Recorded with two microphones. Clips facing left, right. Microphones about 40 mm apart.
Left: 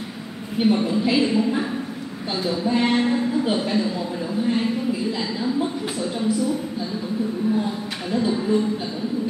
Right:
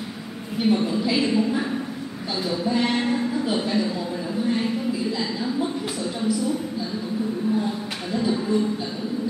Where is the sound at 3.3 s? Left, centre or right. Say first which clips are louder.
Left 2 dB; left.